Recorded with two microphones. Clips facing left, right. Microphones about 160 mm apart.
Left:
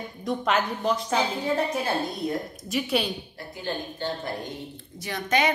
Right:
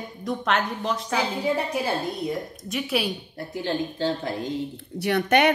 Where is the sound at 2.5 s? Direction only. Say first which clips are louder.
Left 1 dB; centre (ahead or behind).